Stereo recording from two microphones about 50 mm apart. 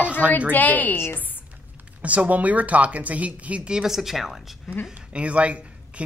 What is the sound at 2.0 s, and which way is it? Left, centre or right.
Speech, right.